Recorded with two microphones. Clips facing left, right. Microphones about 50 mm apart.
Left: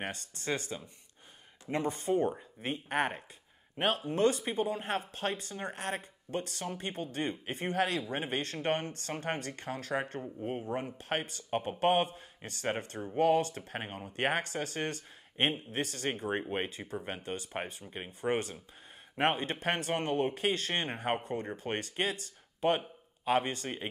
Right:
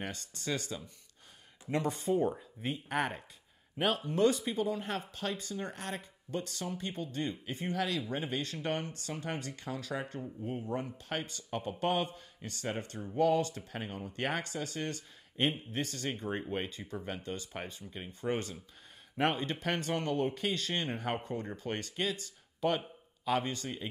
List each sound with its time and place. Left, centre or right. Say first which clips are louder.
0.0 s speech: left 2 dB; left
1.7 s speech: even; centre
2.0 s speech: left 1 dB; centre
2.9 s speech: left 3 dB; centre
4.1 s speech: right 1 dB; left
16.3 s speech: left 2 dB; left